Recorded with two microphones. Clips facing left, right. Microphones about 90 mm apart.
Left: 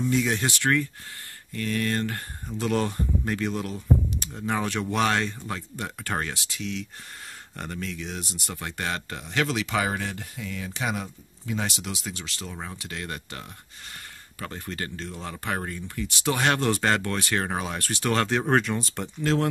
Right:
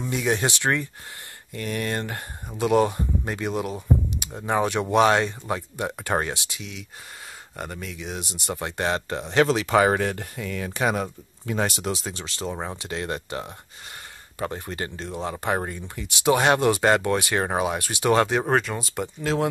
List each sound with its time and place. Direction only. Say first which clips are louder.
0.1 s speech: right 1 dB; 20° right (ahead or behind)
18.5 s speech: even; centre (ahead or behind)